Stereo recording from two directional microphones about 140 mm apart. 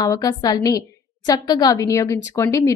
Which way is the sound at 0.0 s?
25° left (ahead or behind).